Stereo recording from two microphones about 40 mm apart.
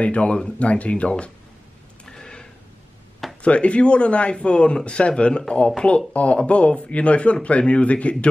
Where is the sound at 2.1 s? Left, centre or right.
Centre.